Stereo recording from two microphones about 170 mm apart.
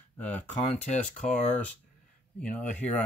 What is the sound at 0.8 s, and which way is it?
Speech, 45° left (ahead or behind).